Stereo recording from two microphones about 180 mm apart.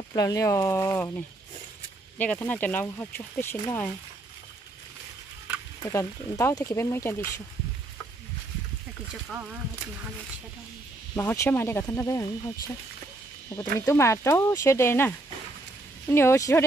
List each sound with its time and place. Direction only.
0.1 s speech: 20° left (ahead or behind)
5.9 s speech: 15° left (ahead or behind)
9.3 s speech: 10° right (ahead or behind)
11.1 s speech: 15° left (ahead or behind)
13.5 s speech: 15° left (ahead or behind)